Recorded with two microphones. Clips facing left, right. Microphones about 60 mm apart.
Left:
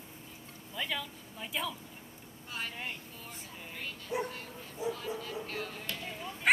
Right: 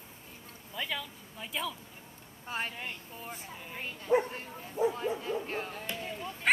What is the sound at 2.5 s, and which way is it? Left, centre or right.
Vehicle, right.